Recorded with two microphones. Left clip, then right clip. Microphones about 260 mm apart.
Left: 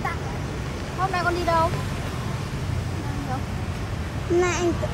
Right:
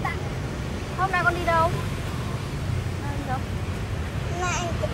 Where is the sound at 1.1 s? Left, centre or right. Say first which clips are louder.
Right 1 dB; centre.